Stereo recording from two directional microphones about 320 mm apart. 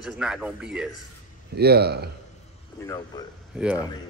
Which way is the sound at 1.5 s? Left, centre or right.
Right.